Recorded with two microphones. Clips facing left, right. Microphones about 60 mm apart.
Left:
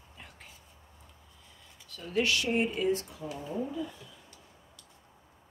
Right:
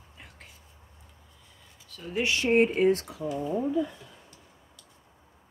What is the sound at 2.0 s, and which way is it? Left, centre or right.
Speech, centre.